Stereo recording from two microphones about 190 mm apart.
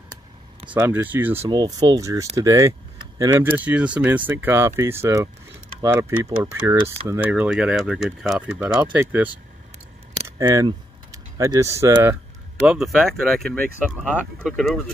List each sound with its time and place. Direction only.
0.7 s speech: 10° right (ahead or behind)
1.5 s speech: 20° right (ahead or behind)
12.6 s speech: centre (ahead or behind)